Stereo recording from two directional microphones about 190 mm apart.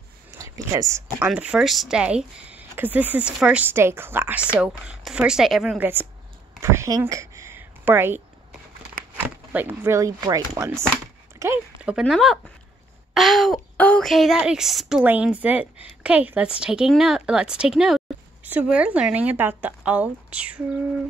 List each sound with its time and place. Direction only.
0.4 s speech: 15° right (ahead or behind)
1.2 s a woman's voice: 5° right (ahead or behind)
6.6 s a sound: 15° right (ahead or behind)
9.1 s a woman's voice: 10° right (ahead or behind)